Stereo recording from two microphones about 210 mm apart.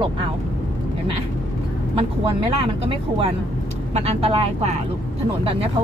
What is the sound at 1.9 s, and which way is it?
Speech, 25° right (ahead or behind).